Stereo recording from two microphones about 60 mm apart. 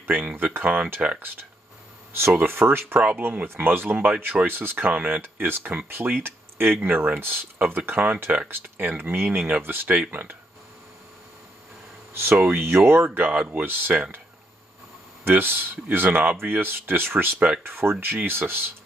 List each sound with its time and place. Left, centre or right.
0.0 s speech: right
2.1 s speech: right
3.9 s speech: right
4.5 s speech: right
9.8 s speech: right
12.1 s speech: right
12.4 s speech: right
15.2 s speech: right